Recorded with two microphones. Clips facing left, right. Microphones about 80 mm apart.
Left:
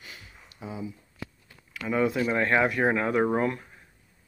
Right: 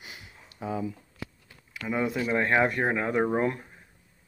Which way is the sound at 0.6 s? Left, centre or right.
Right.